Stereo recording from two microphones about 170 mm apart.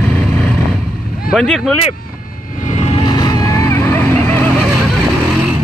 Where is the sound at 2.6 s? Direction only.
45° left (ahead or behind).